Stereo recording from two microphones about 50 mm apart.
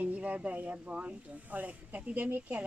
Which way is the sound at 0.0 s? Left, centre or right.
Right.